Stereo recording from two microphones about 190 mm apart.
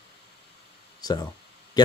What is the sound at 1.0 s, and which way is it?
Speech, 20° left (ahead or behind).